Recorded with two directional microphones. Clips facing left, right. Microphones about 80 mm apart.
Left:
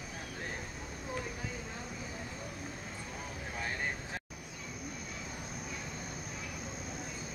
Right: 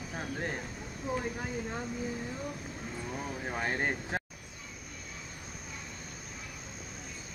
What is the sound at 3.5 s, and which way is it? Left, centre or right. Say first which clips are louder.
Vehicle: right 6 dB; right.